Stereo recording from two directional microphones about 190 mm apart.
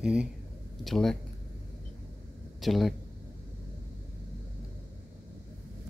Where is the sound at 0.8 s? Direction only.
Centre (ahead or behind).